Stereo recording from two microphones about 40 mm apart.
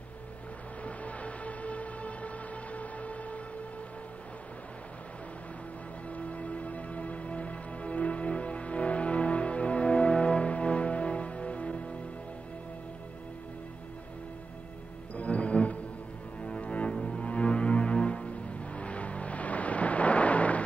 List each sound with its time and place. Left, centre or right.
0.8 s a sound: left
6.0 s music: left
15.1 s music: left